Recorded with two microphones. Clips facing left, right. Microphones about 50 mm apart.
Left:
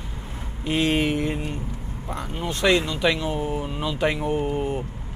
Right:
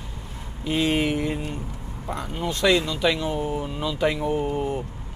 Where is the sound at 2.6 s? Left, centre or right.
Left.